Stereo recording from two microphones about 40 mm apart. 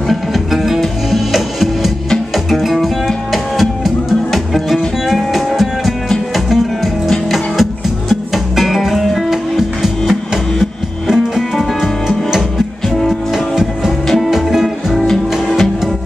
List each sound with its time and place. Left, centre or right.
0.1 s music: centre
14.2 s music: centre
15.0 s music: centre